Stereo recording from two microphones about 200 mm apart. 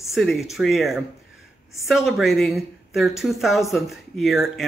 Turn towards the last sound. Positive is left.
turn(degrees=0)  # may be behind; listen again after turning